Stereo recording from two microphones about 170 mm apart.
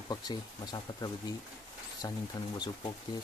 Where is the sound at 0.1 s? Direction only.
25° left (ahead or behind).